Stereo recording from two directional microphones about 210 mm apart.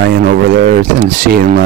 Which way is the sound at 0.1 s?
45° right (ahead or behind).